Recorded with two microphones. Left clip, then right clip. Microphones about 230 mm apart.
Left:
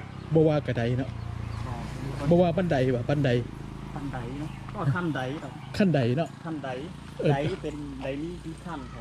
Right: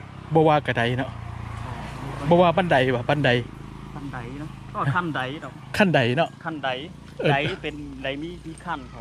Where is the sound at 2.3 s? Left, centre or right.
Right.